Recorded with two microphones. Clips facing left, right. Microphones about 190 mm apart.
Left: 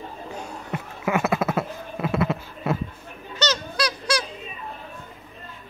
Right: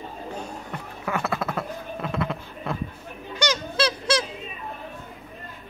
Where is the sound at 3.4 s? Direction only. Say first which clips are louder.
Even; 10° right (ahead or behind).